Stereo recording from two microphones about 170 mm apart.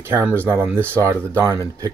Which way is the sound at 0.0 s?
10° right (ahead or behind).